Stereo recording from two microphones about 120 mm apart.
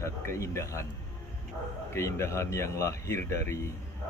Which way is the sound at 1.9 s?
25° left (ahead or behind).